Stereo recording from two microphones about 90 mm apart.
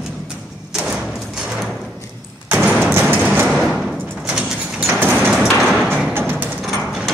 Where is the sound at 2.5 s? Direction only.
15° right (ahead or behind).